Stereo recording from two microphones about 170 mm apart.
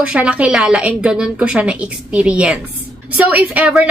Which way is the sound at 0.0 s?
5° right (ahead or behind).